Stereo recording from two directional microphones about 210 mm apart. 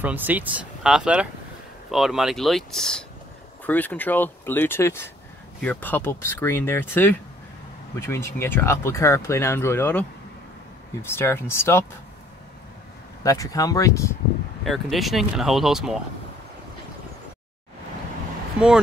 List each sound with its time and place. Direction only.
0.0 s speech: 10° right (ahead or behind); by 11.8 s 10° left (ahead or behind)
13.2 s speech: 15° left (ahead or behind)
14.6 s speech: centre (ahead or behind)